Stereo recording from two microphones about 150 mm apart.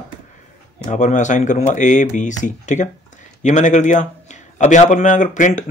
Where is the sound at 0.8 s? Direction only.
55° left (ahead or behind).